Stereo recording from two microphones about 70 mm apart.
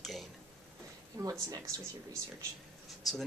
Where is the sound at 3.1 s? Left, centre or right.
Centre.